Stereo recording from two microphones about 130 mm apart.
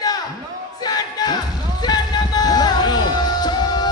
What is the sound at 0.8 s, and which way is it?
Music, 30° left (ahead or behind).